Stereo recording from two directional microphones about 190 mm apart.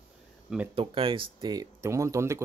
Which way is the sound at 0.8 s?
30° right (ahead or behind).